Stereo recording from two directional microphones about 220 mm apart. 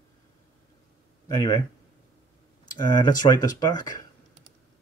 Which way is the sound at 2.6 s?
20° left (ahead or behind).